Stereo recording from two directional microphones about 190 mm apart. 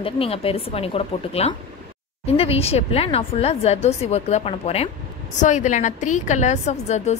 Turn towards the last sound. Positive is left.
turn(degrees=35)  # may be behind; listen again after turning